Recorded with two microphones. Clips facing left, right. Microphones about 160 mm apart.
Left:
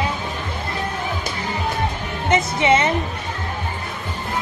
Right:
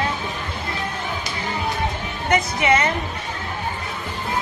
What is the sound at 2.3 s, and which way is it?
Speech, 25° left (ahead or behind).